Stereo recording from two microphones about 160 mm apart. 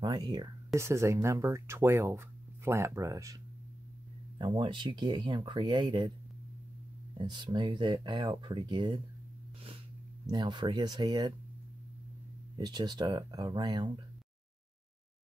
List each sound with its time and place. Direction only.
0.0 s speech: 25° right (ahead or behind)
4.4 s speech: 30° right (ahead or behind)
7.2 s speech: 30° right (ahead or behind)
10.2 s speech: 25° right (ahead or behind)
12.5 s speech: 25° right (ahead or behind)